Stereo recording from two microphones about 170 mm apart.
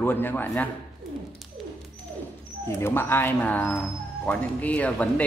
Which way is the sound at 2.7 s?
15° left (ahead or behind).